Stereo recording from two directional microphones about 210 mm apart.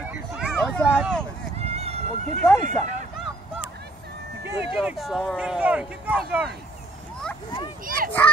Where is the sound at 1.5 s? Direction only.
30° right (ahead or behind).